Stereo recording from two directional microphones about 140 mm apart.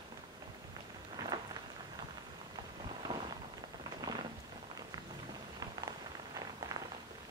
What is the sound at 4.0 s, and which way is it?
Rain, 35° right (ahead or behind).